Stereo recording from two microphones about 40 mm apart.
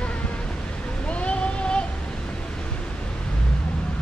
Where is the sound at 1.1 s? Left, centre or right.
Left.